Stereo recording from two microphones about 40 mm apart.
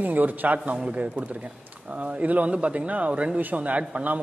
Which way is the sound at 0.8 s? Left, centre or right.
Right.